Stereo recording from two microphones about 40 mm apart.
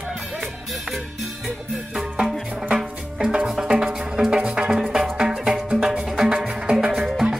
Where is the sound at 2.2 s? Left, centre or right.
Right.